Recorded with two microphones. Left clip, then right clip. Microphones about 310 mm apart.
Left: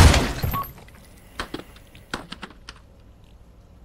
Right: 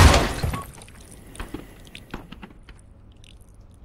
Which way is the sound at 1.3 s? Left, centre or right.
Left.